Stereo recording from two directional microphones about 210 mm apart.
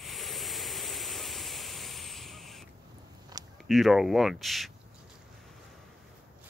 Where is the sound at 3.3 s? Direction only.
20° right (ahead or behind).